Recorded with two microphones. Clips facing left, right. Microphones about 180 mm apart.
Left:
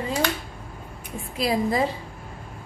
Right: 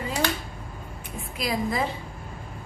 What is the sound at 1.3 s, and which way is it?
Speech, 30° left (ahead or behind).